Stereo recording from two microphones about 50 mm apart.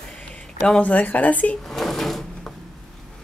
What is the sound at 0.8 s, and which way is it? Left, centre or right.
Speech, left.